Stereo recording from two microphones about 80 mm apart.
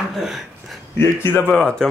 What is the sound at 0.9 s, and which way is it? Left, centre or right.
Speech, left.